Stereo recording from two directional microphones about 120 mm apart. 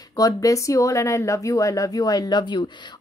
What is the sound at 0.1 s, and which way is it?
Speech, 30° left (ahead or behind).